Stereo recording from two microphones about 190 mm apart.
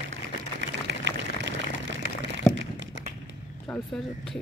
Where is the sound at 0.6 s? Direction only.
65° right (ahead or behind).